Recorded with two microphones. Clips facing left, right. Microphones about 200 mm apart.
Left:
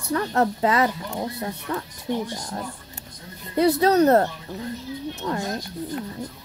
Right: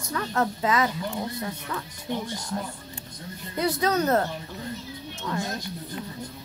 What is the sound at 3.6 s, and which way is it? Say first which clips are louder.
Speech: left 7 dB; 35° left (ahead or behind).